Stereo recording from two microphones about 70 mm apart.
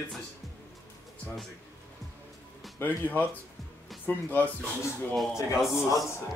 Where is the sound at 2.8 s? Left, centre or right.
Left.